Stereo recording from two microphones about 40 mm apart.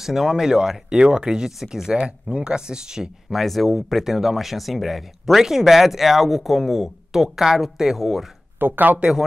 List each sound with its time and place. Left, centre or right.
0.0 s speech: centre
3.3 s speech: centre
8.5 s speech: right